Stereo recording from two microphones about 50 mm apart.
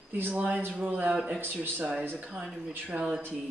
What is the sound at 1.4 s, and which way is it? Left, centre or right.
Speech, right.